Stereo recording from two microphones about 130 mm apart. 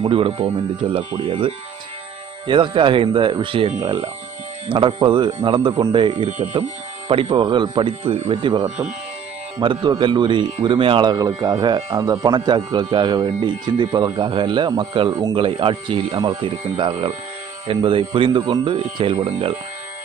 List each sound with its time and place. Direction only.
0.0 s a man's voice: 45° right (ahead or behind)
3.8 s speech: 30° right (ahead or behind)
4.6 s a man's voice: 40° right (ahead or behind)
15.3 s a man's voice: 45° right (ahead or behind)